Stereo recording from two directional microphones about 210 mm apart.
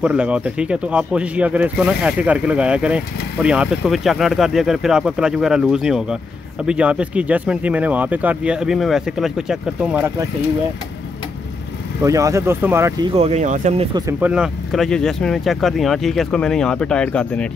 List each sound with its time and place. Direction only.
0.0 s speech: 5° right (ahead or behind)
12.0 s speech: 15° right (ahead or behind)
13.1 s speech: 30° right (ahead or behind)
13.9 s speech: 15° right (ahead or behind)
14.3 s speech: centre (ahead or behind)